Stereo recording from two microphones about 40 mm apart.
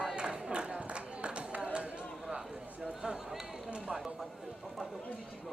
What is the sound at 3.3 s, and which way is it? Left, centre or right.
Run, centre.